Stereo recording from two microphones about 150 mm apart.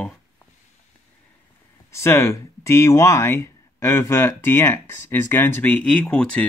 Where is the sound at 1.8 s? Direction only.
20° left (ahead or behind).